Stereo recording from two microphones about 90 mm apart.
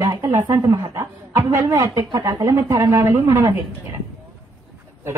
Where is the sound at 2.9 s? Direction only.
30° right (ahead or behind).